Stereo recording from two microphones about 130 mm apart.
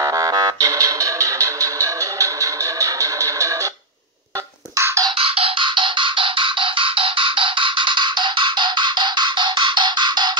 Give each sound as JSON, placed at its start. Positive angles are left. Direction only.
{"t": 0.0, "sound": "music", "side_deg": -25}
{"t": 4.7, "sound": "music", "side_deg": -20}
{"t": 5.0, "sound": "music", "side_deg": -45}